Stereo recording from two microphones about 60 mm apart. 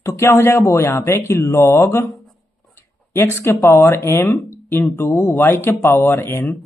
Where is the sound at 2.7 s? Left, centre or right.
Left.